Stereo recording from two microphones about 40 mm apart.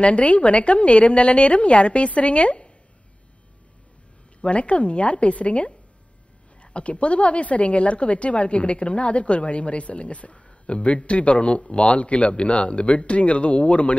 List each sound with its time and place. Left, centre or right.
0.0 s a woman's voice: left
4.4 s a woman's voice: left